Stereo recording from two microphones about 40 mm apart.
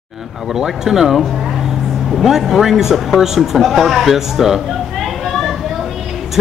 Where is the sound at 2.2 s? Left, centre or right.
Centre.